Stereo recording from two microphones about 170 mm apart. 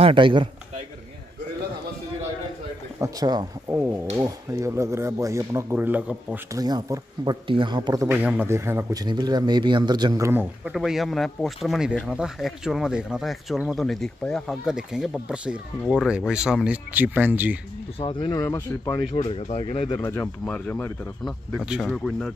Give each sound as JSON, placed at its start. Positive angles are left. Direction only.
{"t": 0.0, "sound": "speech", "side_deg": -30}
{"t": 3.0, "sound": "speech", "side_deg": -20}
{"t": 6.6, "sound": "speech", "side_deg": -25}
{"t": 9.0, "sound": "speech", "side_deg": -25}
{"t": 10.6, "sound": "speech", "side_deg": 0}
{"t": 17.9, "sound": "speech", "side_deg": 30}
{"t": 18.4, "sound": "speech", "side_deg": 20}
{"t": 19.1, "sound": "speech", "side_deg": 35}
{"t": 20.0, "sound": "speech", "side_deg": 10}
{"t": 21.2, "sound": "speech", "side_deg": 0}